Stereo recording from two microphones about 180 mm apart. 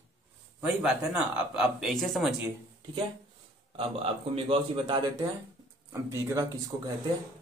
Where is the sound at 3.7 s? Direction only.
30° right (ahead or behind).